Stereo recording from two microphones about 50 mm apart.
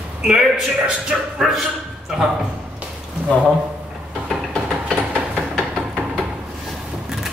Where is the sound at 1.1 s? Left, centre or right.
Centre.